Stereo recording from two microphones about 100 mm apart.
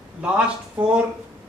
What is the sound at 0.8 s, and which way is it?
Speech, 15° right (ahead or behind).